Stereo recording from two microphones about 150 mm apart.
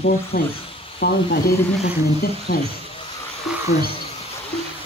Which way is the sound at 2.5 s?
65° left (ahead or behind).